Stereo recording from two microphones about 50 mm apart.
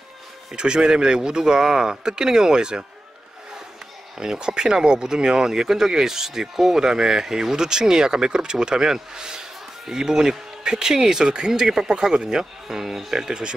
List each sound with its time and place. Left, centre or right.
0.5 s speech: centre
4.2 s speech: centre